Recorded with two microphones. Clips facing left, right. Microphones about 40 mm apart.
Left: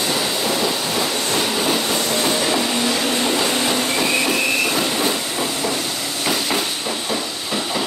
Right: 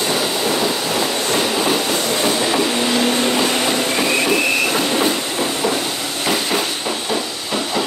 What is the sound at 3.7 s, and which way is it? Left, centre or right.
Train, centre.